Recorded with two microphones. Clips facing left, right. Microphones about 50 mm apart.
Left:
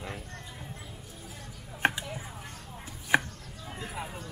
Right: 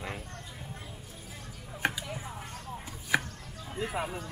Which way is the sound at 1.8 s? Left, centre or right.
Left.